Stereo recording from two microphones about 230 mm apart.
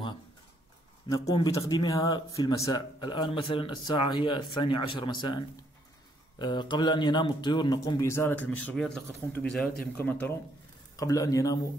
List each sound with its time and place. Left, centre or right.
1.0 s a man's voice: centre